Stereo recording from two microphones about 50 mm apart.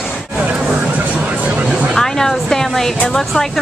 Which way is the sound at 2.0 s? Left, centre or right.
Centre.